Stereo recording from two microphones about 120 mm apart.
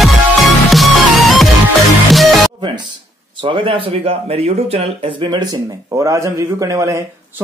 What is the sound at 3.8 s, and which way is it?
Speech, 55° right (ahead or behind).